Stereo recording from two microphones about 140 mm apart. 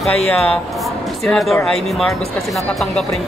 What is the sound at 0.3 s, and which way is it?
Speech, 10° left (ahead or behind).